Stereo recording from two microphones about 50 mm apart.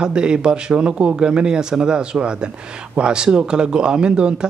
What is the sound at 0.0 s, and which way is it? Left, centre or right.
Speech, centre.